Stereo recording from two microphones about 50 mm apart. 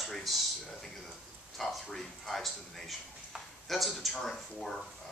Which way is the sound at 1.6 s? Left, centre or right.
Centre.